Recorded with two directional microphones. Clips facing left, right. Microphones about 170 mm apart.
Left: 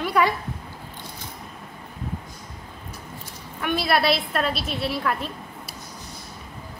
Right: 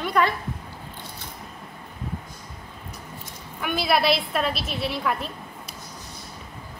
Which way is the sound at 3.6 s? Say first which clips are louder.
Even; centre (ahead or behind).